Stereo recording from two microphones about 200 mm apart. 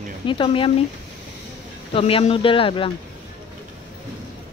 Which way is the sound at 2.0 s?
30° left (ahead or behind).